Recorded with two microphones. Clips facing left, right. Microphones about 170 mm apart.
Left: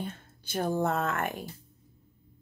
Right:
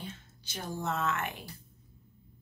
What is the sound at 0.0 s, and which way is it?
Speech, 55° left (ahead or behind).